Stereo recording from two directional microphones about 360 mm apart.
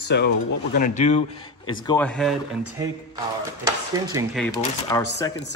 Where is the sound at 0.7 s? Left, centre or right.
Left; by 2.3 s centre.